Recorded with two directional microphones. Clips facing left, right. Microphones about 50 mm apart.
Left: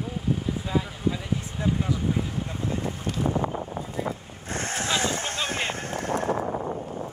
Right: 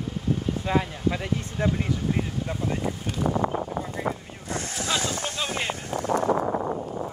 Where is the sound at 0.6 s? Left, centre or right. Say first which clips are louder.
Right 3 dB; right.